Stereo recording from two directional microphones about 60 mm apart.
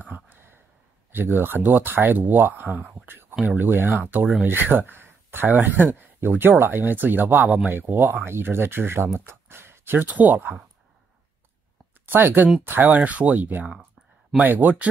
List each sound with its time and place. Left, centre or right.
0.0 s a sound: right
1.1 s speech: right
12.1 s speech: right